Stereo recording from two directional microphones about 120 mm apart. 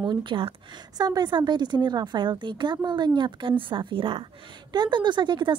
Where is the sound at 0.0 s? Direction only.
40° right (ahead or behind).